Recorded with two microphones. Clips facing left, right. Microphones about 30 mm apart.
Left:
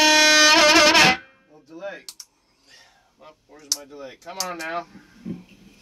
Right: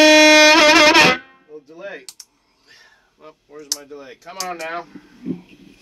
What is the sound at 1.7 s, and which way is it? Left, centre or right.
Typing, right.